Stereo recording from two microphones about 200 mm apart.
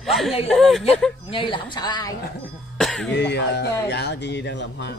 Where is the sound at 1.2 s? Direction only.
25° left (ahead or behind).